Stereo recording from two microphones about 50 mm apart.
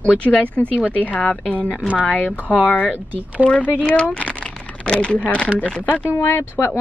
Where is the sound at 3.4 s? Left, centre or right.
Left.